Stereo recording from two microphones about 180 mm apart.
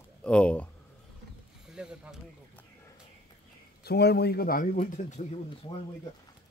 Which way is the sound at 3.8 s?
65° left (ahead or behind).